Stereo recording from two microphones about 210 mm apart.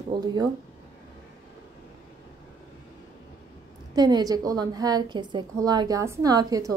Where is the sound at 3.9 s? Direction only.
20° right (ahead or behind).